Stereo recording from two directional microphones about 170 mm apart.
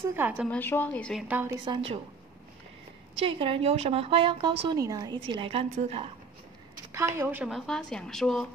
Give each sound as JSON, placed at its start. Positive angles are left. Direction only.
{"t": 0.1, "sound": "a woman's voice", "side_deg": -10}
{"t": 0.5, "sound": "a woman's voice", "side_deg": 10}
{"t": 1.2, "sound": "a woman's voice", "side_deg": -10}
{"t": 1.7, "sound": "a woman's voice", "side_deg": -35}
{"t": 3.2, "sound": "a woman's voice", "side_deg": -30}
{"t": 7.2, "sound": "speech", "side_deg": -10}